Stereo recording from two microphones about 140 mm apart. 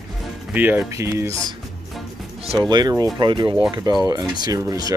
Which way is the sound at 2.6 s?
30° right (ahead or behind).